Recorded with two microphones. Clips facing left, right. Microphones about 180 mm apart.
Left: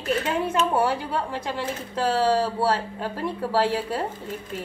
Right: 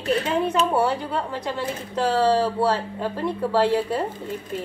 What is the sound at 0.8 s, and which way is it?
A woman's voice, 10° left (ahead or behind).